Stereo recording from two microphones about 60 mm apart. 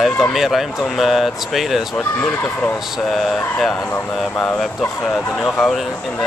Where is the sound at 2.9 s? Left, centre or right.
Centre.